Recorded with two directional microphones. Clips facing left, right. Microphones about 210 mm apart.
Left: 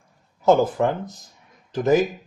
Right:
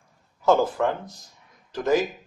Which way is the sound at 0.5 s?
20° left (ahead or behind).